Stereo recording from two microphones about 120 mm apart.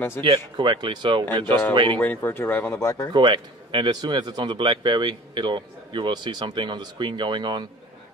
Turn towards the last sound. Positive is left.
turn(degrees=-40)  # may be behind; listen again after turning